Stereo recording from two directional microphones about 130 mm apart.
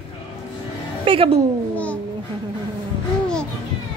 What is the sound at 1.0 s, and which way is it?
Speech, 45° right (ahead or behind).